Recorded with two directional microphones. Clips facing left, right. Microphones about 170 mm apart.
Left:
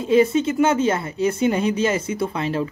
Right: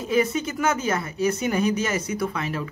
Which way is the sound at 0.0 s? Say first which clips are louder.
Left 6 dB; 30° left (ahead or behind).